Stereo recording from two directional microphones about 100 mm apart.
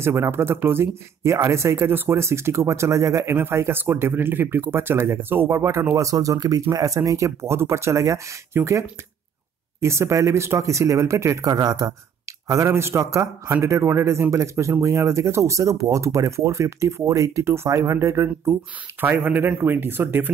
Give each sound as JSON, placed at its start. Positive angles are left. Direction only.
{"t": 0.0, "sound": "a man's voice", "side_deg": -25}